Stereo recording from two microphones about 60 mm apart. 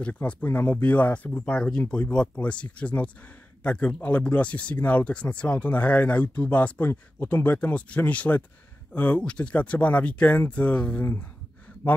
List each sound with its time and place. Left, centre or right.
0.0 s speech: left